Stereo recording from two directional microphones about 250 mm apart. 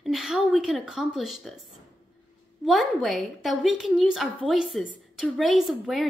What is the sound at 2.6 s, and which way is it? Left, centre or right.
A woman's voice, centre.